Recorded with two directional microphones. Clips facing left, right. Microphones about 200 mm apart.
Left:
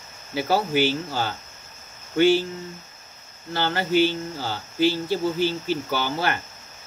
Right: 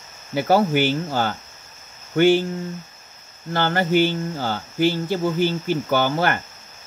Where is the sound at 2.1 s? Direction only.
55° right (ahead or behind).